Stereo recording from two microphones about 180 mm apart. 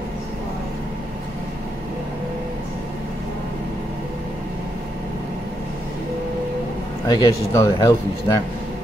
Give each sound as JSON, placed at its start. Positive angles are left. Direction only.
{"t": 7.1, "sound": "speech", "side_deg": 20}